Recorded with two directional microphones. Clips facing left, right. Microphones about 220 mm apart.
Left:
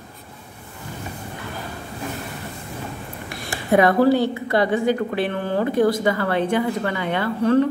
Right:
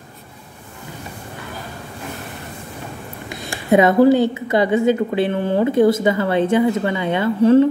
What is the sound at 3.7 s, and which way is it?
A woman's voice, 20° right (ahead or behind).